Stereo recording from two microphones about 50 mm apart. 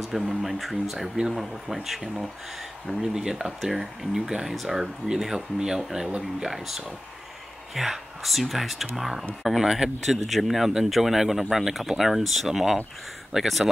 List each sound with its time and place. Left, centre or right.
0.4 s speech: centre